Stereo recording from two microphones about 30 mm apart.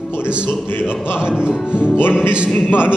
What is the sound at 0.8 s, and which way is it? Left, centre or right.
A man's voice, right.